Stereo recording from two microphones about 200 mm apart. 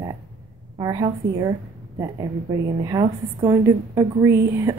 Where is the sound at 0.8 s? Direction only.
20° right (ahead or behind).